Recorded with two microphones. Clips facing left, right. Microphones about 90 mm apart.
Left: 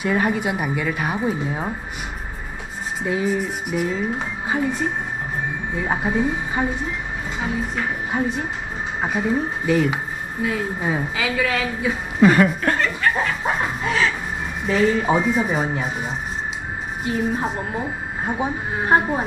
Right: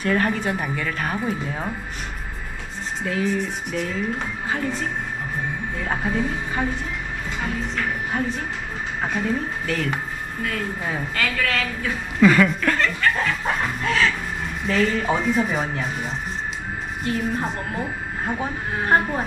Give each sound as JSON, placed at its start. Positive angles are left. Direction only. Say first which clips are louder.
{"t": 0.0, "sound": "a woman's voice", "louder": "left 1 dB", "side_deg": 10}
{"t": 3.1, "sound": "a woman's voice", "louder": "left 2 dB", "side_deg": 15}
{"t": 12.2, "sound": "speech", "louder": "left 1 dB", "side_deg": 30}
{"t": 12.7, "sound": "a woman's voice", "louder": "left 1 dB", "side_deg": 5}